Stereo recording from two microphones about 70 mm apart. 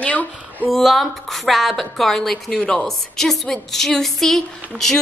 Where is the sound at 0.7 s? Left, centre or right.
Centre.